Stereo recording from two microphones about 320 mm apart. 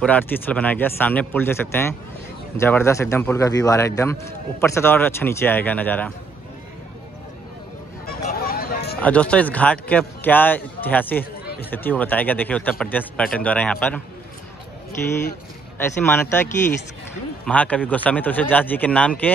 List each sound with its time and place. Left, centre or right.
0.0 s a man's voice: centre
8.2 s vehicle: left
9.0 s a man's voice: centre
15.8 s a man's voice: centre
17.5 s a man's voice: centre